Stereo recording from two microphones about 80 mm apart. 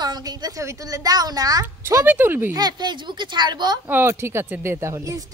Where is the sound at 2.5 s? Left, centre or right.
Right.